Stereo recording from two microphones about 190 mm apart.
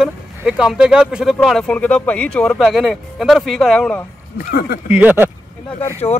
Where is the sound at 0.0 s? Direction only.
5° right (ahead or behind).